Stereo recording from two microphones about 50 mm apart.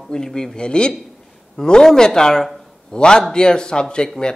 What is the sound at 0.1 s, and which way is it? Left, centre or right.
A man's voice, centre.